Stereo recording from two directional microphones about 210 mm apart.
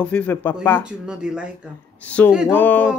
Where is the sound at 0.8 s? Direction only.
5° right (ahead or behind).